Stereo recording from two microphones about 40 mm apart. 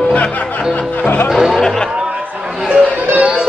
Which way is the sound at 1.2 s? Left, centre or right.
Centre.